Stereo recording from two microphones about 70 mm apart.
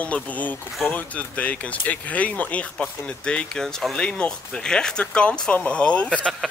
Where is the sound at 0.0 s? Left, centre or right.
Left.